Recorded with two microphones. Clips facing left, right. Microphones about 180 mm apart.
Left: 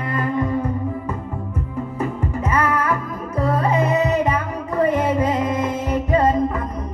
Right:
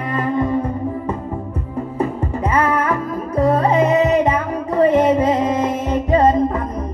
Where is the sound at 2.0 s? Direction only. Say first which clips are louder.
Right 4 dB; 30° right (ahead or behind).